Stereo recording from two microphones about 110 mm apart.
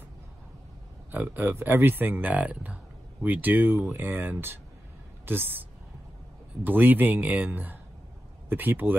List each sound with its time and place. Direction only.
1.1 s a woman's voice: 15° right (ahead or behind)